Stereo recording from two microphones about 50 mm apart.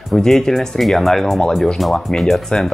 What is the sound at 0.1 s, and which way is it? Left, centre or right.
Speech, centre.